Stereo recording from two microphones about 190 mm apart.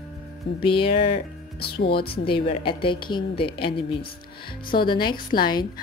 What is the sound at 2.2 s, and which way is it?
A woman's voice, 30° left (ahead or behind).